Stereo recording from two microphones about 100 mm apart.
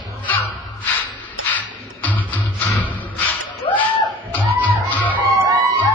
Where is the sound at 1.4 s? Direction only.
15° left (ahead or behind).